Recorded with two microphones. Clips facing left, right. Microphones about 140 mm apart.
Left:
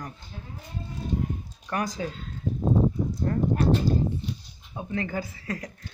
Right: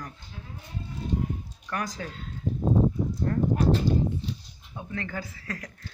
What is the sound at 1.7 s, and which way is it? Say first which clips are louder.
Speech: left 3 dB; 20° left (ahead or behind).